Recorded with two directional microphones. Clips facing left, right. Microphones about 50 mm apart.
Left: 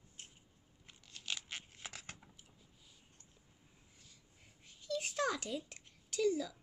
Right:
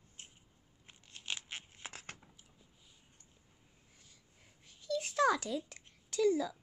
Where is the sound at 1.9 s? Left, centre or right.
Right.